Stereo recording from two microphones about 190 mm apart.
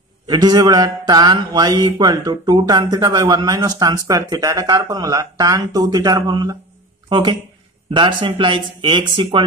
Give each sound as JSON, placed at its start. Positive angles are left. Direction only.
{"t": 0.3, "sound": "speech", "side_deg": -20}